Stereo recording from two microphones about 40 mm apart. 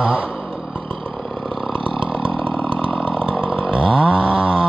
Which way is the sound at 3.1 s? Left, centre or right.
Left.